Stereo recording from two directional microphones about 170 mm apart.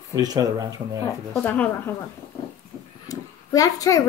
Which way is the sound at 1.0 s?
10° left (ahead or behind).